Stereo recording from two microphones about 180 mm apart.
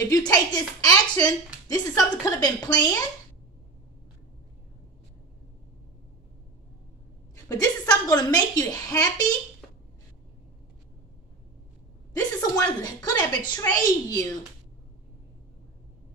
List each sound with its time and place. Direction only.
0.1 s a woman's voice: 20° left (ahead or behind)
7.4 s a woman's voice: 20° left (ahead or behind)
9.6 s a sound: centre (ahead or behind)
12.1 s a woman's voice: 20° left (ahead or behind)